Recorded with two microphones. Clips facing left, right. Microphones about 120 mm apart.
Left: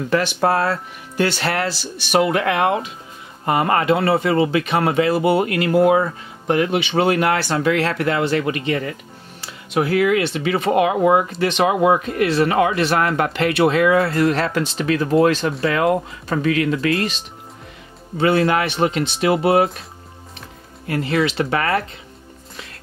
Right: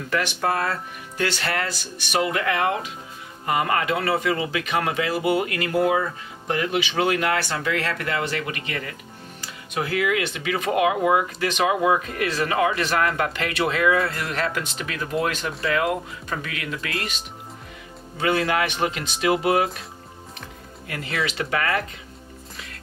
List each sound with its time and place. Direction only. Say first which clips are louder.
0.1 s speech: left 6 dB; 30° left (ahead or behind)
2.2 s speech: left 5 dB; 65° left (ahead or behind)
3.4 s speech: left 5 dB; 35° left (ahead or behind)
6.5 s speech: left 6 dB; 50° left (ahead or behind); by 8.9 s 30° left (ahead or behind)
9.9 s speech: left 5 dB; 35° left (ahead or behind)
20.8 s speech: left 8 dB; 30° left (ahead or behind)